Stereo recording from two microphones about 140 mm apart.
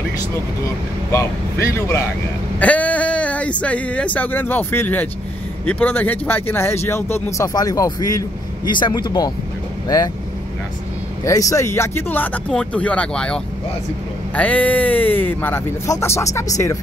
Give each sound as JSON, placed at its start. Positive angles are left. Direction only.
{"t": 1.1, "sound": "speech", "side_deg": 20}
{"t": 11.2, "sound": "speech", "side_deg": 25}